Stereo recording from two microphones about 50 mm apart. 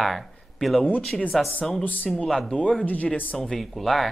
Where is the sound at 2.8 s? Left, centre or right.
Left.